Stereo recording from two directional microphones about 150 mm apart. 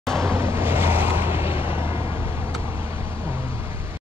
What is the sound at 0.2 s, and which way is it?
Vehicle, 15° right (ahead or behind).